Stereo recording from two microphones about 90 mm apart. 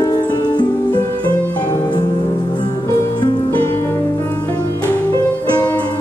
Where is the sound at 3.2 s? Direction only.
50° left (ahead or behind).